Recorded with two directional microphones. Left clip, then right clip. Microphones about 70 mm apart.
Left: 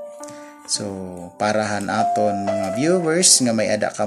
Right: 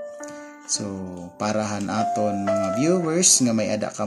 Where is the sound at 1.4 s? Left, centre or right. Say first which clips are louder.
Left 5 dB; centre.